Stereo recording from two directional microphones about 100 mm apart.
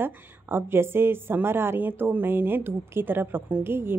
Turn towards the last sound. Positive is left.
turn(degrees=-25)  # may be behind; listen again after turning